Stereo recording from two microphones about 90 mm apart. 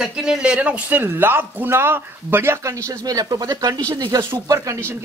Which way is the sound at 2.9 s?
45° right (ahead or behind).